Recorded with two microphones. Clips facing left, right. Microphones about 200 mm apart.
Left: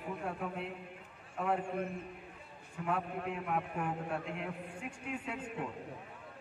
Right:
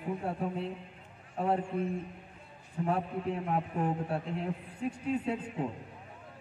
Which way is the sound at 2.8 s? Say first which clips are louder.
Right 4 dB; 30° right (ahead or behind).